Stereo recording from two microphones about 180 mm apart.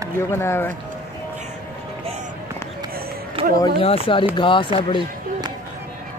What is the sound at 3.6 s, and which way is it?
Speech, 30° left (ahead or behind).